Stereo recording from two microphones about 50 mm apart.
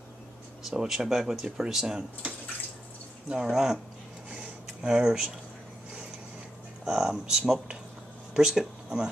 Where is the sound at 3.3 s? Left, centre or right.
Centre.